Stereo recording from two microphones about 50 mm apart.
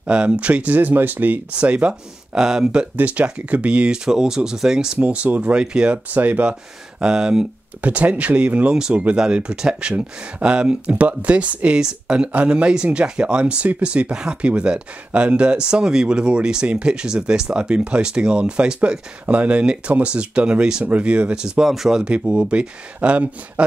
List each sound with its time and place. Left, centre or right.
0.0 s speech: centre
0.7 s speech: right
1.5 s speech: right
2.3 s speech: centre
3.0 s speech: right
4.9 s speech: right
6.0 s speech: right
7.0 s speech: centre
7.8 s speech: right; by 20.8 s centre
20.8 s speech: right; by 22.0 s centre
22.0 s speech: right